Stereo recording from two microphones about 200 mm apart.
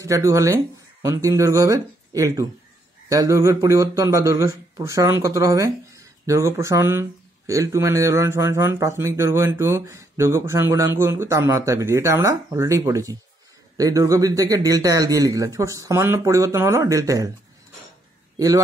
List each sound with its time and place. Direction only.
0.0 s speech: 15° right (ahead or behind)